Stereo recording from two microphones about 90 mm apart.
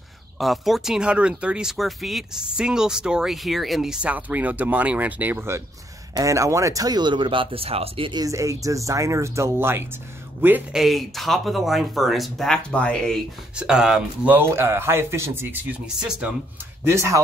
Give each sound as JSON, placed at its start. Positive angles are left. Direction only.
{"t": 0.4, "sound": "speech", "side_deg": 0}
{"t": 6.2, "sound": "speech", "side_deg": -35}
{"t": 8.3, "sound": "speech", "side_deg": -35}
{"t": 10.7, "sound": "speech", "side_deg": 0}
{"t": 12.7, "sound": "speech", "side_deg": 15}
{"t": 13.6, "sound": "speech", "side_deg": -5}
{"t": 14.3, "sound": "speech", "side_deg": -25}
{"t": 16.0, "sound": "speech", "side_deg": -10}
{"t": 16.8, "sound": "speech", "side_deg": -30}